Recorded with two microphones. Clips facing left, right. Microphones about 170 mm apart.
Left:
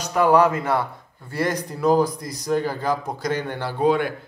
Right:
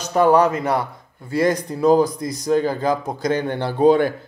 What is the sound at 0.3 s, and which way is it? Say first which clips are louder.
Speech: left 1 dB; 20° right (ahead or behind).